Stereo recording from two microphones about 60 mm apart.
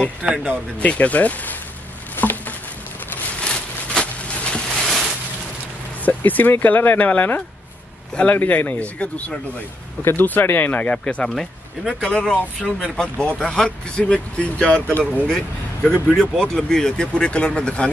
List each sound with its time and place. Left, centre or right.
0.2 s speech: centre
0.7 s speech: left
2.1 s a sound: left
3.3 s a sound: centre
6.0 s speech: left
10.0 s speech: left